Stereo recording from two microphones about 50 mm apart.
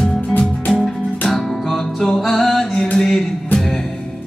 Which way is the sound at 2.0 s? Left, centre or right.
Centre.